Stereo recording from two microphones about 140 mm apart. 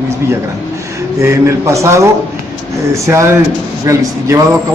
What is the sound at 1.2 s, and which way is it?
A man's voice, 20° right (ahead or behind).